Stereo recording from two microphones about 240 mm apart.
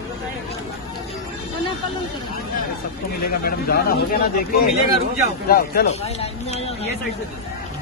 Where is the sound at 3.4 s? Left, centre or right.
Left.